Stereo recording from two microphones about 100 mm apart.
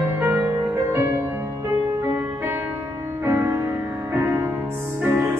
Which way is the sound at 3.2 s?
25° right (ahead or behind).